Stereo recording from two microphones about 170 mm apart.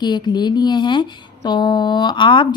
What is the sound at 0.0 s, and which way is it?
Speech, 25° left (ahead or behind).